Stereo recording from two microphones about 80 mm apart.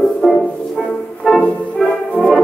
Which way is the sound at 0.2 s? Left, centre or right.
Centre.